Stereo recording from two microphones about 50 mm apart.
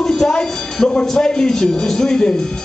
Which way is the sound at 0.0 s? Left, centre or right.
Centre.